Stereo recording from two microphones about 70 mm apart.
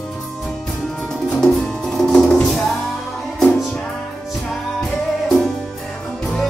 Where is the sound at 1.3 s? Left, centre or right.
Centre.